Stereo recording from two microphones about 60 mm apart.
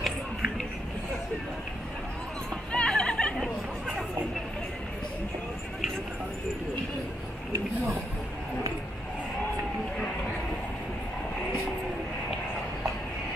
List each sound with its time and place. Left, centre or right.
2.7 s music: centre